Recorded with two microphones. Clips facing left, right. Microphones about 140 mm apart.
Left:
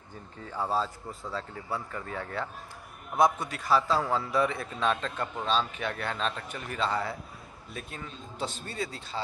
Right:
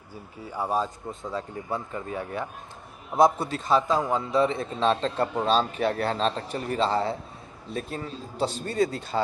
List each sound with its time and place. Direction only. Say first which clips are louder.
0.1 s speech: right 3 dB; 10° right (ahead or behind)
3.1 s a man's voice: right 4 dB; 30° right (ahead or behind)